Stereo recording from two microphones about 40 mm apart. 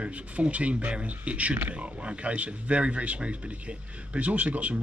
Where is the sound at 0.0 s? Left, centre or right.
Right.